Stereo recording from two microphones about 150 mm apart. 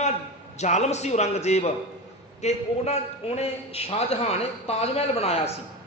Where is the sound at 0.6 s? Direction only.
50° left (ahead or behind).